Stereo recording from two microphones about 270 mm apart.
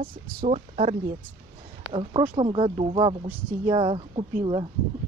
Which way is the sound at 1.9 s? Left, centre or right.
Centre.